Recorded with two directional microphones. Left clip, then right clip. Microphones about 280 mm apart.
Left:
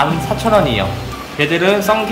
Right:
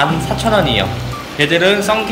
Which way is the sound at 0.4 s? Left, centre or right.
Centre.